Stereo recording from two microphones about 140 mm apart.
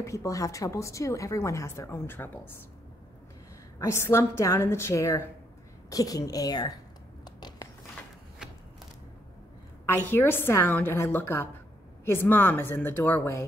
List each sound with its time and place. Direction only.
0.0 s a woman's voice: 20° left (ahead or behind)
3.8 s a woman's voice: 20° left (ahead or behind)
7.2 s a sound: 30° left (ahead or behind)
10.0 s a woman's voice: 15° left (ahead or behind)